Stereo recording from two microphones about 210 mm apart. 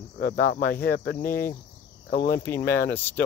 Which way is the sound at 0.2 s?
40° left (ahead or behind).